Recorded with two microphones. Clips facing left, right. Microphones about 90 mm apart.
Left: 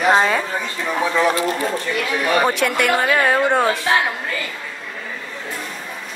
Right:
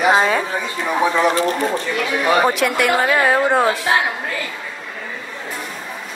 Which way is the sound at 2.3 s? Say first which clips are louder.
Even; centre (ahead or behind).